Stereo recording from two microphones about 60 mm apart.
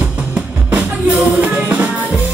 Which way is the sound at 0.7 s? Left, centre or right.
Right.